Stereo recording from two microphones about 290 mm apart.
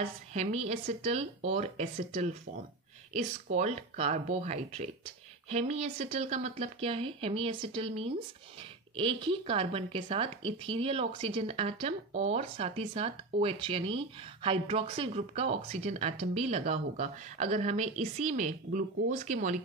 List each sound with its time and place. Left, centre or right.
0.0 s speech: right